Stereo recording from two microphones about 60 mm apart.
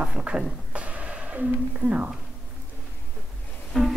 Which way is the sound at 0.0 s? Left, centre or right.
Centre.